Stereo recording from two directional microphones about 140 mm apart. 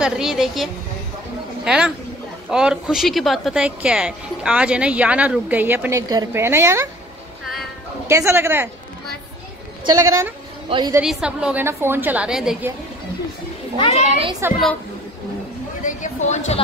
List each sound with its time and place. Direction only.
0.0 s a woman's voice: 5° right (ahead or behind); by 6.9 s 20° right (ahead or behind)
8.1 s a woman's voice: 20° right (ahead or behind)
9.8 s speech: 20° right (ahead or behind)
11.0 s a woman's voice: 5° right (ahead or behind)
13.9 s a child's voice: 55° right (ahead or behind)
14.4 s a woman's voice: 15° right (ahead or behind)
15.8 s a sound: 60° left (ahead or behind)